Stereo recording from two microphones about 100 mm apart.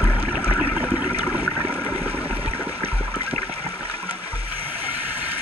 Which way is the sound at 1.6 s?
15° left (ahead or behind).